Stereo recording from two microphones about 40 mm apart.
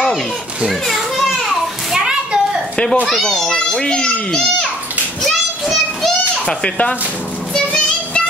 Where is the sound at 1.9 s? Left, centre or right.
Centre.